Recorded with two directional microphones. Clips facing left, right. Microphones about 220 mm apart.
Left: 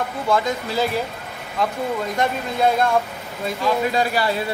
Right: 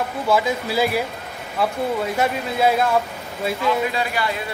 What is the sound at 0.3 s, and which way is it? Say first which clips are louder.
Speech: right 1 dB; 5° right (ahead or behind).